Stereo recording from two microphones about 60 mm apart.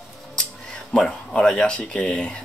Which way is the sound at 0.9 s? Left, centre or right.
Centre.